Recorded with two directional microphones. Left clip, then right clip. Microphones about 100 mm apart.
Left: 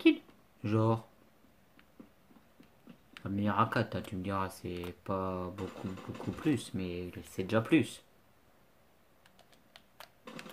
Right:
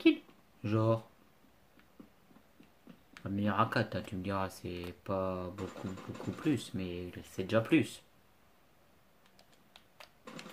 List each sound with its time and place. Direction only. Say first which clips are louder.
0.6 s speech: even; 25° left (ahead or behind)
3.3 s speech: left 1 dB; 15° left (ahead or behind)
5.6 s speech: left 1 dB; centre (ahead or behind)
6.3 s speech: left 1 dB; 20° left (ahead or behind)